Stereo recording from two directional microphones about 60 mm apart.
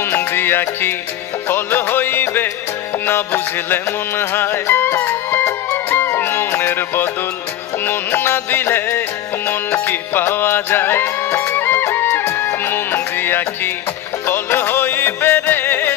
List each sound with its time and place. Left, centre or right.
0.1 s music: left
6.1 s music: left